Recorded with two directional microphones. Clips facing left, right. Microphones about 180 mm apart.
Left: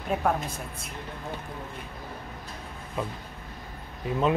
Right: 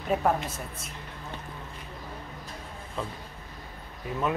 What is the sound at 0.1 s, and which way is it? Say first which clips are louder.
Speech: right 1 dB; 5° right (ahead or behind).